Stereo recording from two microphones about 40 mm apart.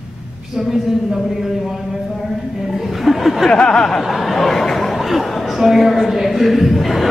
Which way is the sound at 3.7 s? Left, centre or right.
Centre.